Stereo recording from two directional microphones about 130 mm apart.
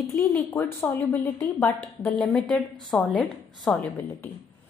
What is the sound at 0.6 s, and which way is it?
A woman's voice, 20° left (ahead or behind).